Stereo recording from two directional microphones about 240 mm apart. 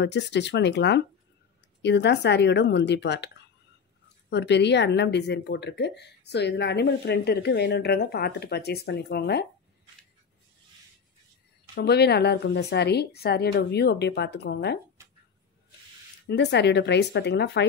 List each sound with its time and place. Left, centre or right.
0.0 s speech: left
4.3 s speech: left
11.7 s speech: left
16.3 s speech: left